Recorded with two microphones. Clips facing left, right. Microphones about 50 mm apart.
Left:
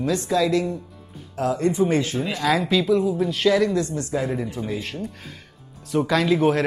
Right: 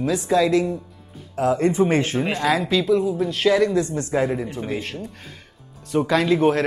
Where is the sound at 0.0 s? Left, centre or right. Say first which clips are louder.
Right 2 dB; centre.